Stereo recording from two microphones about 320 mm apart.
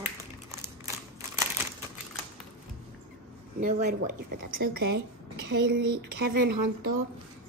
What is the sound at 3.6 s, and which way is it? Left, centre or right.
Speech, right.